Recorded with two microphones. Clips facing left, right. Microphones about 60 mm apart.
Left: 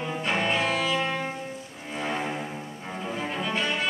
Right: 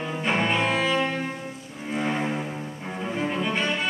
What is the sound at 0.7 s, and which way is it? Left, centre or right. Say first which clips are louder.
Music: right 2 dB; centre.